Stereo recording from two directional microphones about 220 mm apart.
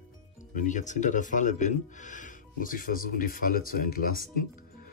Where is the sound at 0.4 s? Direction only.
35° left (ahead or behind).